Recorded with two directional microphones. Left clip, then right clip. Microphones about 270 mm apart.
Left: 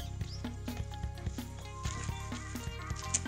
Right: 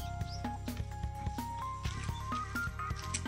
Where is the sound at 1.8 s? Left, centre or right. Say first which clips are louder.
Even; centre.